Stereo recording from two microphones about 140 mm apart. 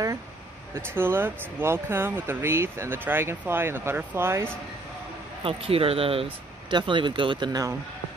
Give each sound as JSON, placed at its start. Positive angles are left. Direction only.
{"t": 0.9, "sound": "speech", "side_deg": -15}
{"t": 5.4, "sound": "speech", "side_deg": -40}